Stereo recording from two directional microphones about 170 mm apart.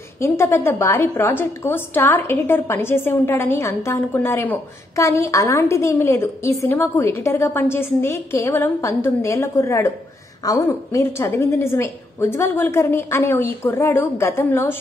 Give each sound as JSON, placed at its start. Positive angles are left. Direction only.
{"t": 0.2, "sound": "a woman's voice", "side_deg": 15}